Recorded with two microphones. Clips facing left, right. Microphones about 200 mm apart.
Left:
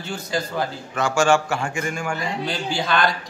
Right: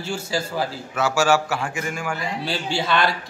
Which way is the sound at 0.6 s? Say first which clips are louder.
Even; 5° right (ahead or behind).